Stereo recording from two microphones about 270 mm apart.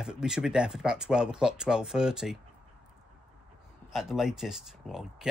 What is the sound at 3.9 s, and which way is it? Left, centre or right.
A man's voice, centre.